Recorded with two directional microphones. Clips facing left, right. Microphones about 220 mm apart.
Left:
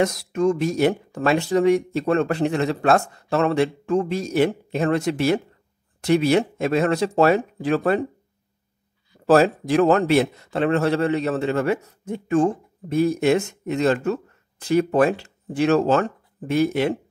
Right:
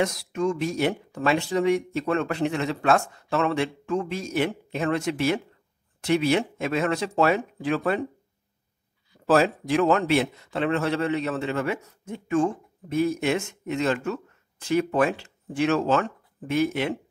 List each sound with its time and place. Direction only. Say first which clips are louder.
0.0 s speech: left 5 dB; 40° left (ahead or behind)
9.2 s speech: left 4 dB; 40° left (ahead or behind)